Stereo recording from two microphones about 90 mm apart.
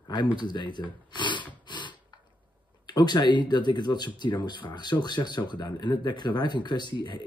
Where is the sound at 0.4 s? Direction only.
55° left (ahead or behind).